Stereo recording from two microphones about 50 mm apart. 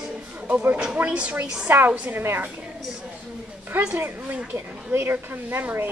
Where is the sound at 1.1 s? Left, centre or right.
Right.